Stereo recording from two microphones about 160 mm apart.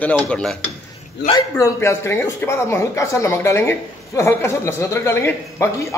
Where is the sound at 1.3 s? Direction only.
20° left (ahead or behind).